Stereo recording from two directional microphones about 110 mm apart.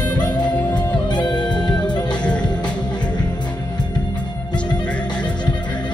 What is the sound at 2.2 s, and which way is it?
Music, 10° left (ahead or behind).